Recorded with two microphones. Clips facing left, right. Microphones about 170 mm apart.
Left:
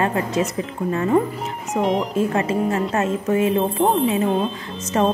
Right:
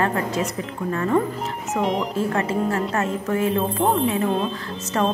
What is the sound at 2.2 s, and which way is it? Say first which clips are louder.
A woman's voice: left 1 dB; 20° left (ahead or behind).